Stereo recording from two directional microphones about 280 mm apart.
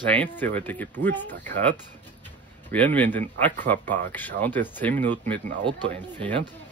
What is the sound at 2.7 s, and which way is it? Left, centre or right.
Speech, centre.